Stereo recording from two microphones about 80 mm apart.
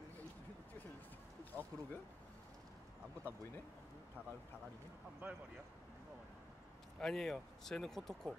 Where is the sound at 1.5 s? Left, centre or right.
Right.